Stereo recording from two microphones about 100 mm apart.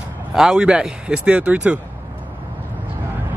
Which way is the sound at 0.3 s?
5° right (ahead or behind).